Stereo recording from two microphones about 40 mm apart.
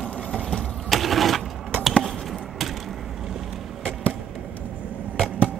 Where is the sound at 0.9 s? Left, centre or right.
Centre.